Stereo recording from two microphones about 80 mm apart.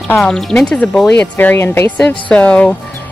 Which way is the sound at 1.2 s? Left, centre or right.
Left.